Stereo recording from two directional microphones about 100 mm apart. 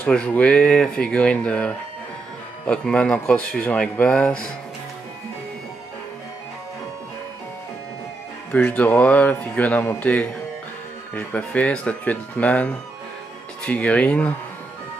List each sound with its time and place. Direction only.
0.0 s speech: 15° left (ahead or behind)
8.5 s speech: 10° left (ahead or behind)